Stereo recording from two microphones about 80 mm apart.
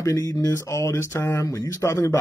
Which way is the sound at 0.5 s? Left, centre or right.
Left.